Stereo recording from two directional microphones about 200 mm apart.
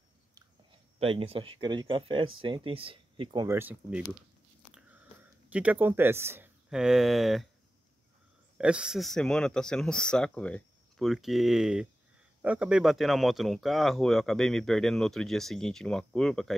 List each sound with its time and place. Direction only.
0.9 s speech: 30° right (ahead or behind); by 4.0 s 10° right (ahead or behind)
5.5 s speech: 5° right (ahead or behind)
8.5 s speech: 5° right (ahead or behind)